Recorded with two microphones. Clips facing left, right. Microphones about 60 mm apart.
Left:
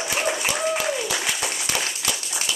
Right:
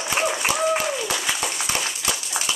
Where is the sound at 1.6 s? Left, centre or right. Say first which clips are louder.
Right 1 dB; right.